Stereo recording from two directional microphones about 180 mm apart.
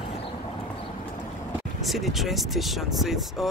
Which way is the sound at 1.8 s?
Centre (ahead or behind).